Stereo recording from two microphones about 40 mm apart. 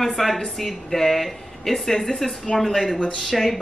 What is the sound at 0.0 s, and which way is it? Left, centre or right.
A woman's voice, centre.